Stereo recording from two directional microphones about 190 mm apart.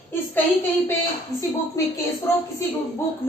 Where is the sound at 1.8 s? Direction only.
15° left (ahead or behind).